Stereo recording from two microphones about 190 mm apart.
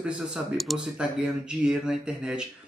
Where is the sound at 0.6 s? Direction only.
Centre (ahead or behind).